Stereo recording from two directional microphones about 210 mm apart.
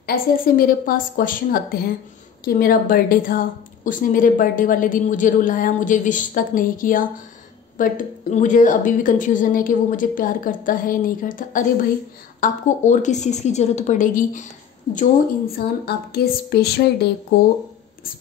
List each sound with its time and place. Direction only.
0.0 s a woman's voice: 45° left (ahead or behind)
15.5 s a woman's voice: 45° left (ahead or behind)